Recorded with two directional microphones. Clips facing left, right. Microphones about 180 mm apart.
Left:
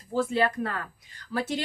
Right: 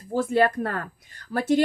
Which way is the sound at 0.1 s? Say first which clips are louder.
Right 4 dB; 50° right (ahead or behind).